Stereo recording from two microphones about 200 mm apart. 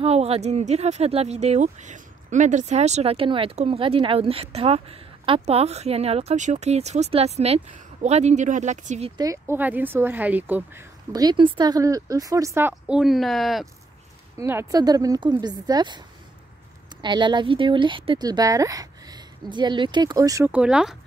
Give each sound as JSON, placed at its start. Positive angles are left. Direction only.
{"t": 0.0, "sound": "speech", "side_deg": -30}
{"t": 9.1, "sound": "speech", "side_deg": -15}
{"t": 14.4, "sound": "speech", "side_deg": -10}
{"t": 17.0, "sound": "speech", "side_deg": -20}